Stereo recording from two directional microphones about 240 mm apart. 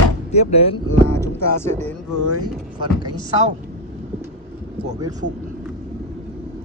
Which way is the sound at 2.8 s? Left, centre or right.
Centre.